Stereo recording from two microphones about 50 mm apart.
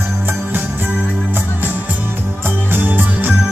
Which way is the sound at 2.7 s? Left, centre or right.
Right.